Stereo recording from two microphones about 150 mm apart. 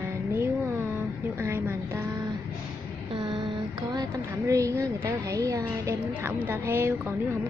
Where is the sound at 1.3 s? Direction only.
15° right (ahead or behind).